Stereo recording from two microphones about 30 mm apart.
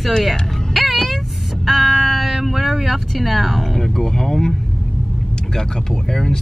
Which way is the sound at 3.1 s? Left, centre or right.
Centre.